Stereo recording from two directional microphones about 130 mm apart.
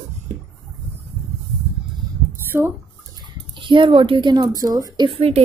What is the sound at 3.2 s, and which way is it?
Speech, 40° right (ahead or behind).